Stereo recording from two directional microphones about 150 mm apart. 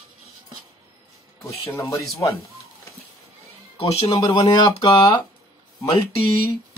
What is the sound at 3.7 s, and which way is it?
Speech, 40° left (ahead or behind).